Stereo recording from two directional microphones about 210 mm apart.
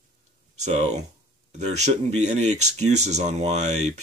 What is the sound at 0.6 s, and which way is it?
Speech, 35° right (ahead or behind).